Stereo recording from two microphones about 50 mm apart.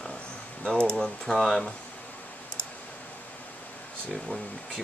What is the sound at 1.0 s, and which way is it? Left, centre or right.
Speech, centre.